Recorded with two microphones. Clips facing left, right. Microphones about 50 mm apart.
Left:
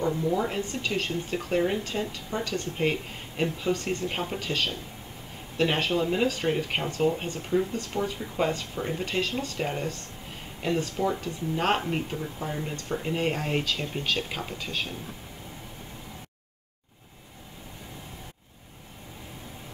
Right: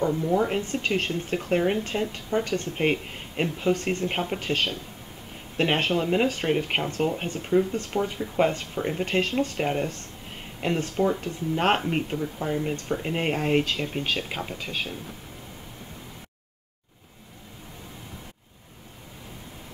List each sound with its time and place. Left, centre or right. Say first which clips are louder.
0.0 s speech: right 3 dB; right
13.9 s speech: right 1 dB; centre